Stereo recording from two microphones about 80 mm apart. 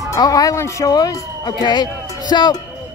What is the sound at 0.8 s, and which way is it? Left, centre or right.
Speech, left.